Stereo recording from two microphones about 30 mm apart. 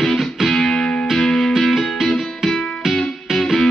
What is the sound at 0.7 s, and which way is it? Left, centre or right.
Music, left.